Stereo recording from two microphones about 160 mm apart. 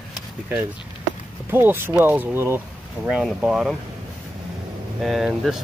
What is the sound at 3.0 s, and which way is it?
Speech, centre (ahead or behind).